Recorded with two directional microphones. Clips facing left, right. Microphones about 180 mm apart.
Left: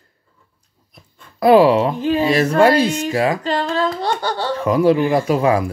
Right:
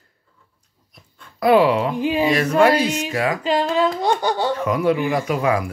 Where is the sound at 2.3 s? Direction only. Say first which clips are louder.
Left 2 dB; 30° left (ahead or behind).